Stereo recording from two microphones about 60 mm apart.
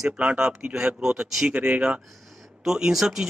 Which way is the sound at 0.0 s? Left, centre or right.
Centre.